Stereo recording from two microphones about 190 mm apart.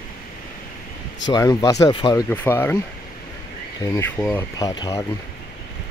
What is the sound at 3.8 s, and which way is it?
Speech, 15° left (ahead or behind).